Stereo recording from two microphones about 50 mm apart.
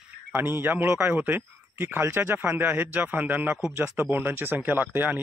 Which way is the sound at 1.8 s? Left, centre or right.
Right.